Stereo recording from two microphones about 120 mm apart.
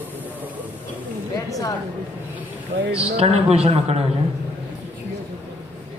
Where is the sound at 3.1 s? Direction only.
60° right (ahead or behind).